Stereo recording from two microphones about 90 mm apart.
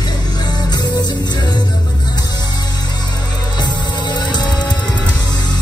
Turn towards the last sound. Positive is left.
turn(degrees=55)  # may be behind; listen again after turning